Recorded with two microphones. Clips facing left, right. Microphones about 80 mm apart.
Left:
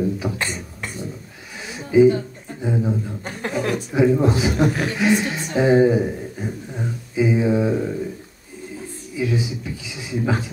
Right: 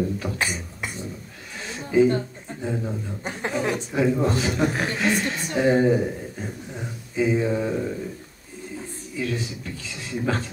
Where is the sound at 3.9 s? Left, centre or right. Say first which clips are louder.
Left 5 dB; centre.